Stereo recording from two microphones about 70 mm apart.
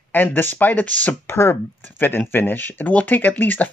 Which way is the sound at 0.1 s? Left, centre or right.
Left.